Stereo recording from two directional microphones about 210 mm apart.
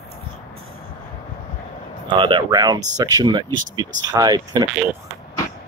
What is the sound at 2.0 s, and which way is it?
Speech, 25° right (ahead or behind).